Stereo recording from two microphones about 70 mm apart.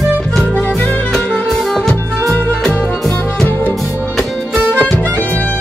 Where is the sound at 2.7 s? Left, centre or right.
Left.